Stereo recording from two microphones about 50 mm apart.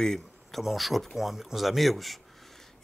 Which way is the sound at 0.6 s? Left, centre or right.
Centre.